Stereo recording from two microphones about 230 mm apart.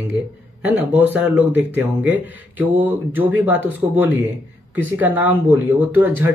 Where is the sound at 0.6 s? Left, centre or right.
Centre.